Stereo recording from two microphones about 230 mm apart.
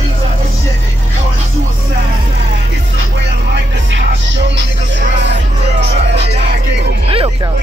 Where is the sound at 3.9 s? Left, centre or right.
Right.